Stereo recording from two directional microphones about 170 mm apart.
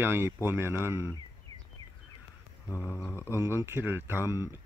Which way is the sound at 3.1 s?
15° right (ahead or behind).